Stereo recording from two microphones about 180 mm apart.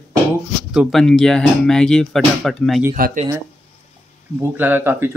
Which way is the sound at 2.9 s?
45° right (ahead or behind).